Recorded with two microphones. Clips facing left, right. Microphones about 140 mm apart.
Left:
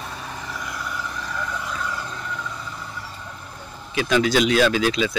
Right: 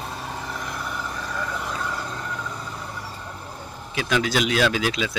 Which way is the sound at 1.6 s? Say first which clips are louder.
Even; 35° right (ahead or behind).